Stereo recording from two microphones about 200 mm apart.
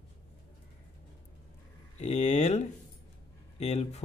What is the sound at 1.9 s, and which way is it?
Speech, 35° left (ahead or behind).